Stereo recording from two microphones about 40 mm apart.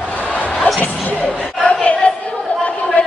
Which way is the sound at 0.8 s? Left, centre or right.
Left.